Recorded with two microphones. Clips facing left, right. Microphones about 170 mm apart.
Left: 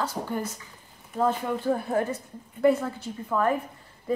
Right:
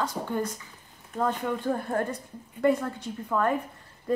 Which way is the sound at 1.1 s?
5° left (ahead or behind).